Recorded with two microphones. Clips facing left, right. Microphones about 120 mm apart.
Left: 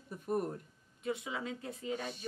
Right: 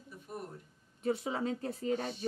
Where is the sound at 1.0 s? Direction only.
35° right (ahead or behind).